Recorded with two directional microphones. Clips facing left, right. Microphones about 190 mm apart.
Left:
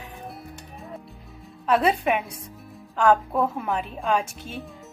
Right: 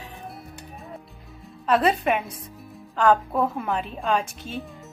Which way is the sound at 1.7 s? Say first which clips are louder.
Even; 5° left (ahead or behind).